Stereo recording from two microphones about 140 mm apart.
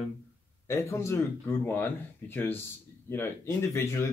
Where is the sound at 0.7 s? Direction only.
20° left (ahead or behind).